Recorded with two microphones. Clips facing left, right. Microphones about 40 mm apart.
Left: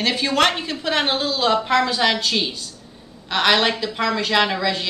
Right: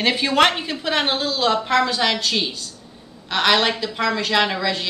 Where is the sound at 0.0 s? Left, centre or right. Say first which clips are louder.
Right 2 dB; centre.